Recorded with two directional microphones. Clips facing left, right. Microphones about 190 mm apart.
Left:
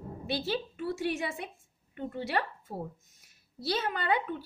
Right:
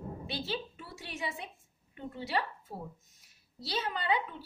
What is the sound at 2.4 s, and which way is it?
Speech, 50° left (ahead or behind).